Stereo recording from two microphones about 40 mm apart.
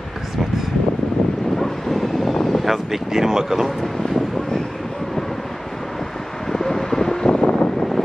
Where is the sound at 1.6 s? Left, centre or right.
Centre.